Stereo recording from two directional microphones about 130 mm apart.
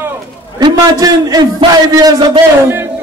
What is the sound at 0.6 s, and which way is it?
A man's voice, 30° right (ahead or behind).